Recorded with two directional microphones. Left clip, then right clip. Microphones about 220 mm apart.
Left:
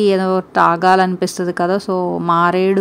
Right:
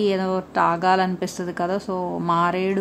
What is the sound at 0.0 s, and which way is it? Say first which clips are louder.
Speech: left 7 dB; 25° left (ahead or behind).